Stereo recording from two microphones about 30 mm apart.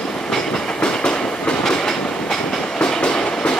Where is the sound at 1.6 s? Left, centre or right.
Centre.